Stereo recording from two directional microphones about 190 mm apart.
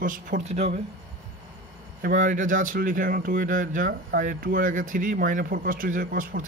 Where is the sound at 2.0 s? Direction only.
45° right (ahead or behind).